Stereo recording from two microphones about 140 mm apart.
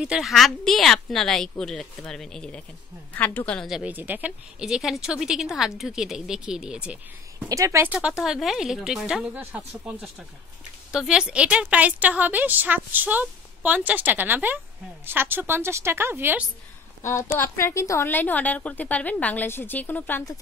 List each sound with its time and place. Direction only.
0.0 s a woman's voice: 5° right (ahead or behind)
3.7 s a woman's voice: 10° right (ahead or behind)
7.4 s a woman's voice: 25° right (ahead or behind)
17.4 s a woman's voice: 15° left (ahead or behind)